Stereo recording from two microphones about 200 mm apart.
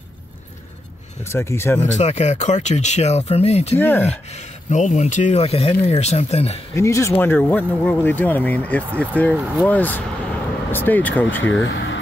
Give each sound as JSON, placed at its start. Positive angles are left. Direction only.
{"t": 1.2, "sound": "speech", "side_deg": 10}
{"t": 1.8, "sound": "speech", "side_deg": 35}
{"t": 3.7, "sound": "speech", "side_deg": 10}
{"t": 4.3, "sound": "speech", "side_deg": 35}
{"t": 6.7, "sound": "speech", "side_deg": 15}
{"t": 11.6, "sound": "speech", "side_deg": 65}